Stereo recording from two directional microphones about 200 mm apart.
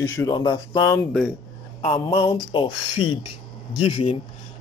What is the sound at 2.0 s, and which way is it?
Speech, 20° left (ahead or behind).